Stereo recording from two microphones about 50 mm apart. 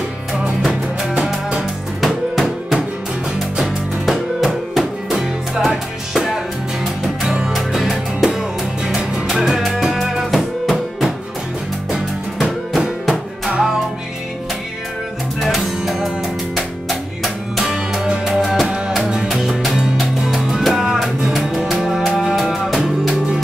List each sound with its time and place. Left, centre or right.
1.0 s music: centre
2.0 s music: centre
4.0 s music: centre
13.1 s music: centre
15.8 s music: centre
17.7 s music: centre
18.7 s music: centre
19.2 s music: centre